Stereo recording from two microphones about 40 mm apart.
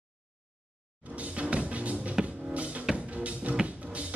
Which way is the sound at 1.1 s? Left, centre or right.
Right.